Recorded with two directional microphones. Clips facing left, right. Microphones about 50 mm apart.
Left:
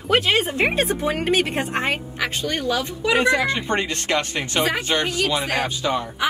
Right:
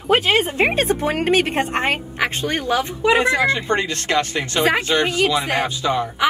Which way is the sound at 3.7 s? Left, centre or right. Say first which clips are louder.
Right 3 dB; left.